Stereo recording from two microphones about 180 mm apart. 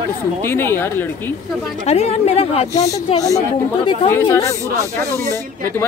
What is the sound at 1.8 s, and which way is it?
Speech, 35° left (ahead or behind).